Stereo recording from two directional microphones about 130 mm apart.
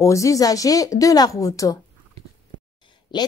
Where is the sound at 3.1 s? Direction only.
35° left (ahead or behind).